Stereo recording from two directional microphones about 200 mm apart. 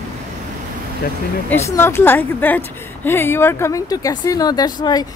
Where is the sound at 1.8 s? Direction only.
10° left (ahead or behind).